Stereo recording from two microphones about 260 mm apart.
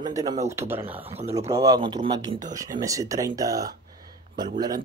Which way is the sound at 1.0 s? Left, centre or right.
Right.